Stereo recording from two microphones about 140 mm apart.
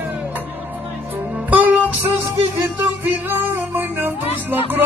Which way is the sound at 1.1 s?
10° right (ahead or behind).